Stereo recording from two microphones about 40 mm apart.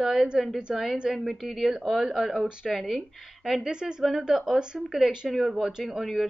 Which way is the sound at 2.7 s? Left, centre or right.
Centre.